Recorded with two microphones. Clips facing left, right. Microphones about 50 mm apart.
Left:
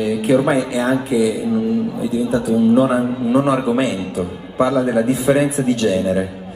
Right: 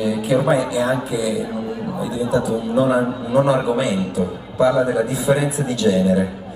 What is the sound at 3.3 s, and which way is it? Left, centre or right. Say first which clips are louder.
Speech: even; left.